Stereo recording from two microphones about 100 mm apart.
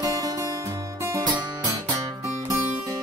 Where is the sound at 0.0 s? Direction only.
35° right (ahead or behind).